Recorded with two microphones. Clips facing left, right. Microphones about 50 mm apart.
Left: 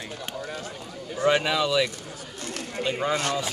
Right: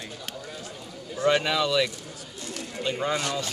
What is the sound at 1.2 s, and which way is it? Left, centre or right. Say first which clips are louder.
Speech: left 1 dB; centre.